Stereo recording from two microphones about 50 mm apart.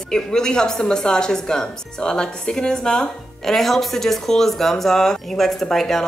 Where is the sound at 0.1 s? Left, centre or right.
Centre.